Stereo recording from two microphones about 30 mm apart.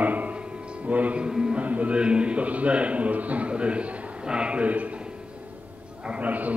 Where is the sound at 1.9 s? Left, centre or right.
Right.